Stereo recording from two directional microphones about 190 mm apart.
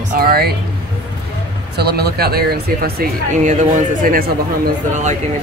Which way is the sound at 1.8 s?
60° right (ahead or behind).